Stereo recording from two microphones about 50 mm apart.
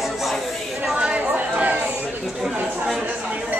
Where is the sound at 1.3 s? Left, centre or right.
Right.